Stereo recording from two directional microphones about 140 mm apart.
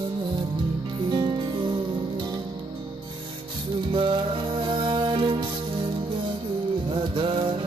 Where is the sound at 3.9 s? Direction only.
35° right (ahead or behind).